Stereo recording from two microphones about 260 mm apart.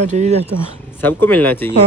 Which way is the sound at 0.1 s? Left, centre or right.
Right.